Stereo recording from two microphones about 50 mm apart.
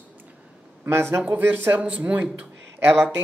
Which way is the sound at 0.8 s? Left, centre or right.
Right.